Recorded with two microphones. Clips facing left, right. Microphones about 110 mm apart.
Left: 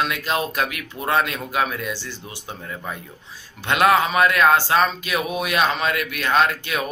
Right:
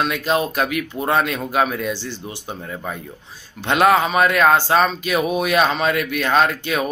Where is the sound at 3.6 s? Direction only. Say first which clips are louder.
Right 2 dB; 35° right (ahead or behind).